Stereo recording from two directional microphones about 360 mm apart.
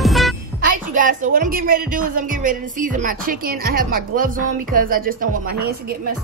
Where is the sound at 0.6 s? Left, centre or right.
Right.